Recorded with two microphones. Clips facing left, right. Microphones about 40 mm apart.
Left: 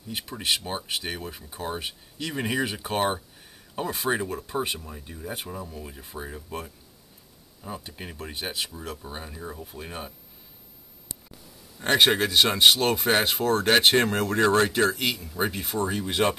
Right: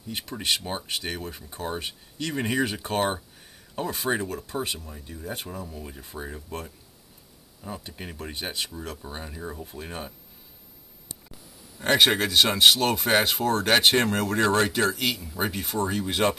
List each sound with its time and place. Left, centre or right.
0.1 s speech: centre
4.2 s speech: centre
11.8 s speech: centre